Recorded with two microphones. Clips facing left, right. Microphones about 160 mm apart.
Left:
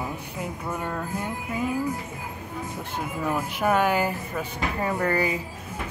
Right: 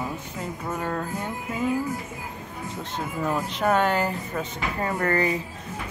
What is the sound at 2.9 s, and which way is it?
Speech, 10° left (ahead or behind).